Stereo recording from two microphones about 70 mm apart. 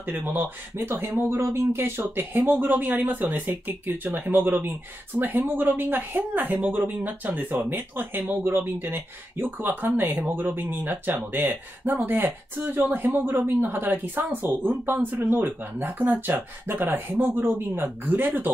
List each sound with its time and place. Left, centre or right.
0.2 s speech: right